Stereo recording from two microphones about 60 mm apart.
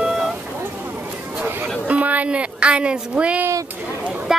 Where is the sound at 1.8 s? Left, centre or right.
Right.